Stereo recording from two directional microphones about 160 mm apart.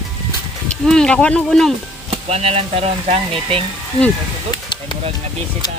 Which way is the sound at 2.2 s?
40° right (ahead or behind).